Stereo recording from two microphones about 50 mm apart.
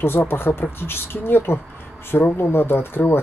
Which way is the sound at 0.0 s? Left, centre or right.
Left.